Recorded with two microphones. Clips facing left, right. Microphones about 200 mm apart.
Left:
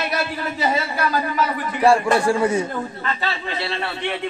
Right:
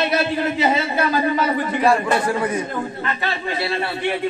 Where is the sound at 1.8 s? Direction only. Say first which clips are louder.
Left 3 dB; 30° left (ahead or behind).